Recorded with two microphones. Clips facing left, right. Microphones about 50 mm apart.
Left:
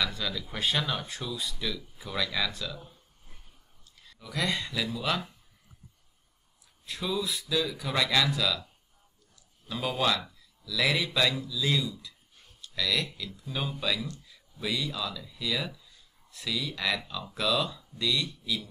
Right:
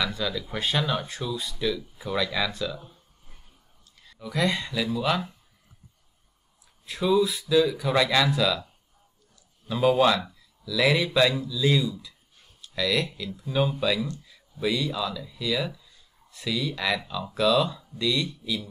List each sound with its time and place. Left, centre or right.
0.0 s speech: centre
4.0 s speech: centre
6.9 s speech: centre
9.7 s speech: centre